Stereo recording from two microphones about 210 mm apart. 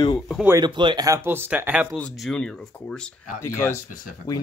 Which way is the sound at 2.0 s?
Centre (ahead or behind).